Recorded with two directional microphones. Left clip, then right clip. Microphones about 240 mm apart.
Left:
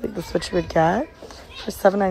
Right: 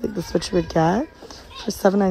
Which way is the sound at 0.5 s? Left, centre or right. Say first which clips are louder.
Left 1 dB; centre.